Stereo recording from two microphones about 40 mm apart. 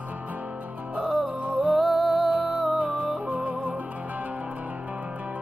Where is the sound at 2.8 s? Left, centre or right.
Right.